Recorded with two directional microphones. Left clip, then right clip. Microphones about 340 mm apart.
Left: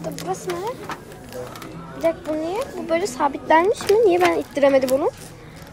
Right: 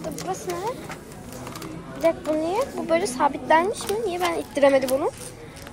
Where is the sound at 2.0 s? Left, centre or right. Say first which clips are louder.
Even; centre.